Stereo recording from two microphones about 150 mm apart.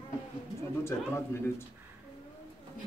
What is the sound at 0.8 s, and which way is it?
Speech, 15° left (ahead or behind).